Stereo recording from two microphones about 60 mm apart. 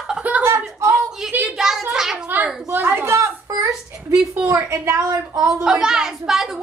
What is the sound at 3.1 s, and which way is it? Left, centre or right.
Whimper, right.